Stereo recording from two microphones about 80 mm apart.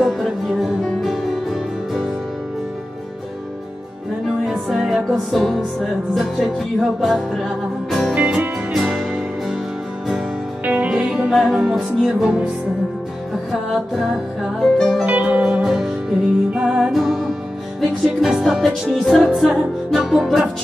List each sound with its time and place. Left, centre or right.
0.5 s music: centre
4.3 s music: centre
8.1 s music: centre
8.7 s music: centre
10.6 s music: centre
13.5 s music: centre
15.0 s music: centre